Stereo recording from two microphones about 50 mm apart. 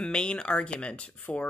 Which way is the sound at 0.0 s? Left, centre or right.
Centre.